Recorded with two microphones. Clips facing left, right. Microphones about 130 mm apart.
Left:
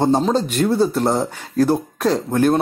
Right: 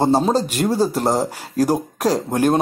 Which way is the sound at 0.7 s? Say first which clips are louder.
Left 1 dB; 35° right (ahead or behind).